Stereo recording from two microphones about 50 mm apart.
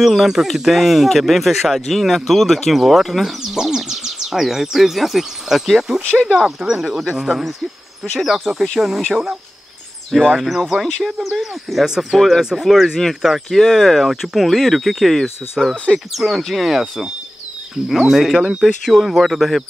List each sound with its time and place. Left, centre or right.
0.0 s speech: centre
6.0 s speech: centre
6.6 s speech: centre
18.9 s speech: centre